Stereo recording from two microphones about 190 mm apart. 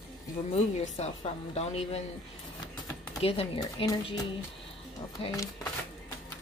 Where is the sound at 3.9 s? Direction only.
20° left (ahead or behind).